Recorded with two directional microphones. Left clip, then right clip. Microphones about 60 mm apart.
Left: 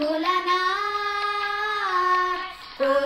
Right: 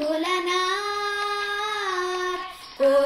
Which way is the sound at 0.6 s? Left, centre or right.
Right.